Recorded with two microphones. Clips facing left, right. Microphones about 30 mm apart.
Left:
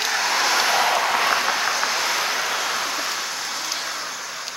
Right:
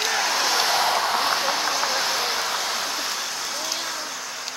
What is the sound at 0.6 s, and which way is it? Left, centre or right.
Vehicle, left.